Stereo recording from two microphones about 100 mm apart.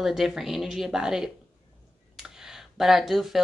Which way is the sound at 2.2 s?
5° right (ahead or behind).